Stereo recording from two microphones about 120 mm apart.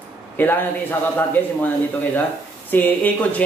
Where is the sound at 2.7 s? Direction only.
15° left (ahead or behind).